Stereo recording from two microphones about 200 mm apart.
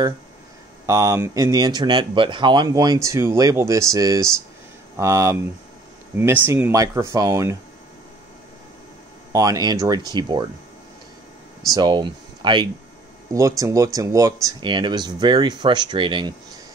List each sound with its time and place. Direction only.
0.8 s speech: 15° right (ahead or behind)
9.3 s speech: 15° right (ahead or behind)
11.7 s speech: 20° right (ahead or behind)